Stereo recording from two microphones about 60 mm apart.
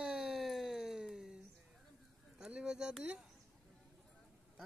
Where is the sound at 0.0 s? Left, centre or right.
Centre.